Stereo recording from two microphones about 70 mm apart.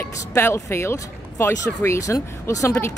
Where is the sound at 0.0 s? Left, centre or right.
Left.